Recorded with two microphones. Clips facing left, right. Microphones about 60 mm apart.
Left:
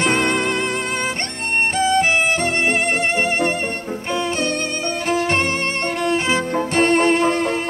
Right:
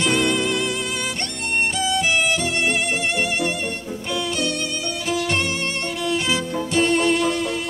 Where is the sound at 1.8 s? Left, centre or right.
Left.